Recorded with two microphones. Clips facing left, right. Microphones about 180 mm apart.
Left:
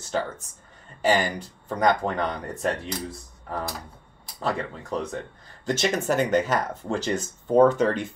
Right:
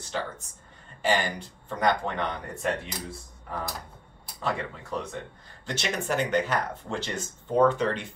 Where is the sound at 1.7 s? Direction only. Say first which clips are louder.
Left 4 dB; 40° left (ahead or behind).